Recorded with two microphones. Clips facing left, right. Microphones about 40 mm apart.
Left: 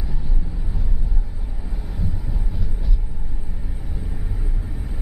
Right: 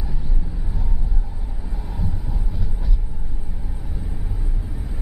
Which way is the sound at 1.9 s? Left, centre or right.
Centre.